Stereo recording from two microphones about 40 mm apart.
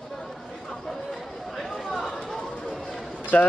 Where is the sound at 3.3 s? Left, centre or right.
Left.